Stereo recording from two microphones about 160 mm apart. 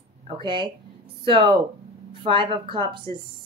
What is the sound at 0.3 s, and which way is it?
A woman's voice, 30° right (ahead or behind).